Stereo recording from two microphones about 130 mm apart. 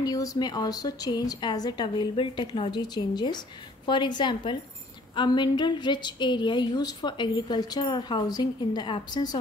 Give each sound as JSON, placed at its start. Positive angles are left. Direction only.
{"t": 0.0, "sound": "a woman's voice", "side_deg": 30}